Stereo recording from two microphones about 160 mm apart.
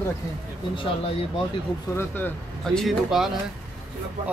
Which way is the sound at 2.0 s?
10° left (ahead or behind).